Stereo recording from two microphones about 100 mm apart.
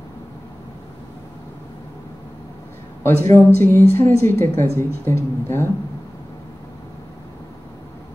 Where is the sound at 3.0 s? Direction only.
25° left (ahead or behind).